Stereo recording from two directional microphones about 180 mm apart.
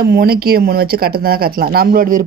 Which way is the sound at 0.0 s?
60° right (ahead or behind).